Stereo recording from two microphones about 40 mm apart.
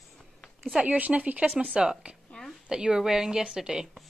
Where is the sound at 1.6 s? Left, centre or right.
Right.